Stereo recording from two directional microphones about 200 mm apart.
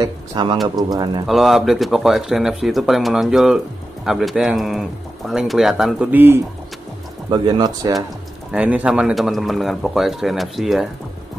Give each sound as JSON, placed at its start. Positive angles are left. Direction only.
{"t": 0.0, "sound": "speech", "side_deg": -20}
{"t": 1.2, "sound": "speech", "side_deg": 0}
{"t": 7.2, "sound": "speech", "side_deg": -25}
{"t": 8.5, "sound": "speech", "side_deg": -5}